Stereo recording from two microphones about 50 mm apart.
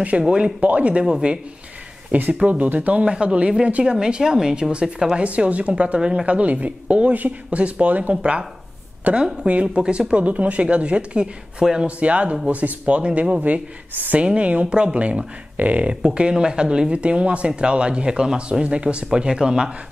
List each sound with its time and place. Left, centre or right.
0.3 s a woman's voice: right
2.1 s a woman's voice: right